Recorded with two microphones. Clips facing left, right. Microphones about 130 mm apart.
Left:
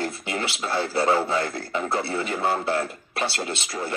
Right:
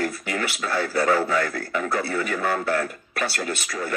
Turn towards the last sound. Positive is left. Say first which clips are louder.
# right 1 dB
turn(degrees=25)  # may be behind; listen again after turning